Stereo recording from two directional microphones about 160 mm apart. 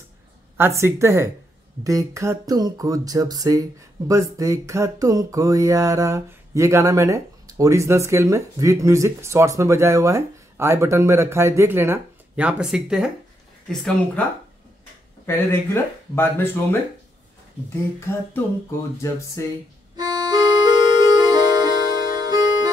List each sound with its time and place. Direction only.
0.6 s speech: 15° right (ahead or behind)
1.9 s a sound: 20° right (ahead or behind); by 13.1 s 5° right (ahead or behind)
13.7 s speech: 5° left (ahead or behind)
15.2 s speech: 15° left (ahead or behind)
19.4 s speech: 20° left (ahead or behind)
20.0 s music: 25° right (ahead or behind)